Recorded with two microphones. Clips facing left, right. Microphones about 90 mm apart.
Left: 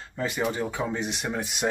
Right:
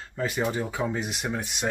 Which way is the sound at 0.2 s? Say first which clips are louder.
Even; centre (ahead or behind).